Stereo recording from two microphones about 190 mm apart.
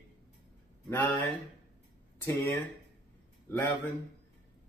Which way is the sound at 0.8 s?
10° left (ahead or behind).